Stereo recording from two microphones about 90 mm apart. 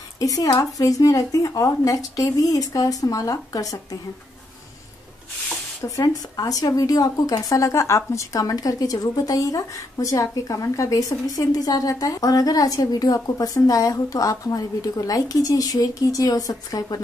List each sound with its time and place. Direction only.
0.2 s speech: 40° left (ahead or behind)
5.9 s speech: 45° left (ahead or behind)